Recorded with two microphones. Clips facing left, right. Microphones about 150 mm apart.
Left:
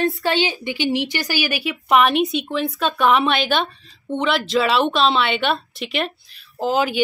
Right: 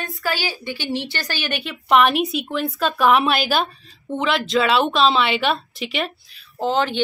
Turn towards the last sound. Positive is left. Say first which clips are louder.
# left 1 dB
turn(degrees=5)  # may be behind; listen again after turning